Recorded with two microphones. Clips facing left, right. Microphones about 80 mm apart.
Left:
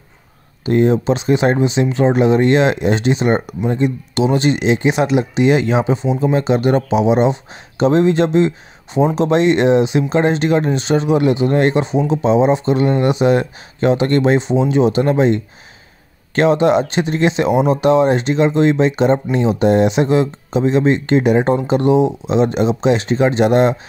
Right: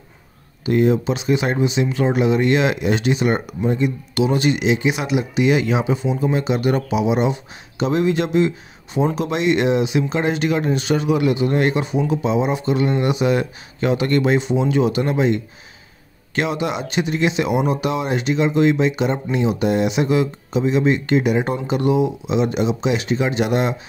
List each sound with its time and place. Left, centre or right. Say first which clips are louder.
0.7 s speech: left 3 dB; left